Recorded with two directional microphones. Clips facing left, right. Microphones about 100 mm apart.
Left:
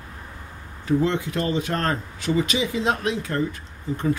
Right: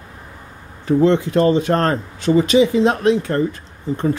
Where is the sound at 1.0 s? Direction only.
35° right (ahead or behind).